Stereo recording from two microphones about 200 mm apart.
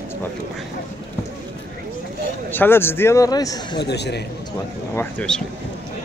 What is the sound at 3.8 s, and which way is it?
Speech, 55° left (ahead or behind).